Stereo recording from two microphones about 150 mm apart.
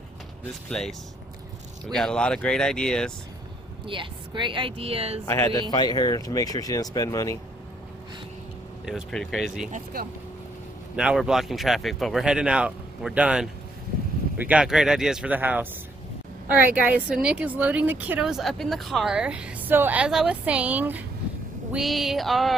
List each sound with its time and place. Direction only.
0.7 s speech: 5° left (ahead or behind)
3.8 s speech: 35° right (ahead or behind)
5.2 s speech: 20° left (ahead or behind)
8.8 s speech: centre (ahead or behind)
9.7 s speech: 55° right (ahead or behind)
11.0 s a woman's voice: 5° right (ahead or behind)